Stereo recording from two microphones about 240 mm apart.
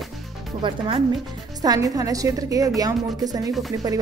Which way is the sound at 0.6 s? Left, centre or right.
Right.